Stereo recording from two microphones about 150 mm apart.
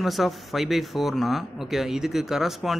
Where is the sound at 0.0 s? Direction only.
Centre (ahead or behind).